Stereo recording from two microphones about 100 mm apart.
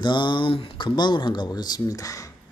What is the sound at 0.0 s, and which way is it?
Speech, 50° left (ahead or behind).